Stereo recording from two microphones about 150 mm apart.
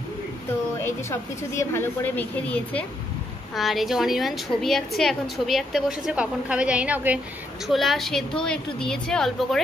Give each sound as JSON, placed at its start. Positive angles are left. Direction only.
{"t": 0.7, "sound": "speech", "side_deg": 15}
{"t": 3.5, "sound": "a woman's voice", "side_deg": 0}